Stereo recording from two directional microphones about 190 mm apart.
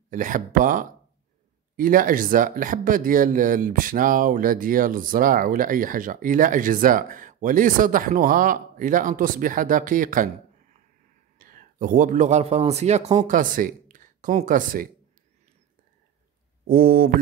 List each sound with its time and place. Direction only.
0.1 s speech: 45° right (ahead or behind)
16.6 s speech: 50° right (ahead or behind)